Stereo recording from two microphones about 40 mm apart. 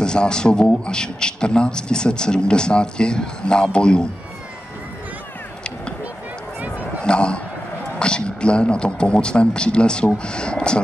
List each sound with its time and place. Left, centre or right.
0.0 s a man's voice: centre
7.0 s a sound: left
8.0 s a man's voice: left